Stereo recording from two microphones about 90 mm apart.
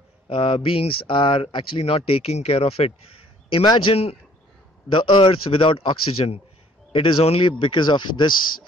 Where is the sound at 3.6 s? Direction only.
65° left (ahead or behind); by 4.2 s 80° left.